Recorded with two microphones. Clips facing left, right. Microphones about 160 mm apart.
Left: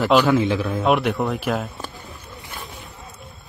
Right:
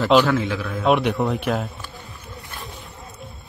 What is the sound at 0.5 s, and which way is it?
Speech, 25° left (ahead or behind).